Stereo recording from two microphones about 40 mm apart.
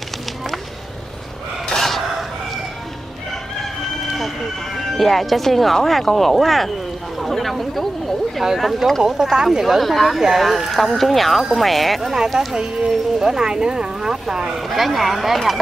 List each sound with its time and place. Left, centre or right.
1.8 s chicken: centre
4.2 s music: centre
5.9 s speech: centre
7.2 s a sound: centre
8.5 s speech: centre
9.8 s speech: centre
12.4 s speech: centre
14.7 s speech: centre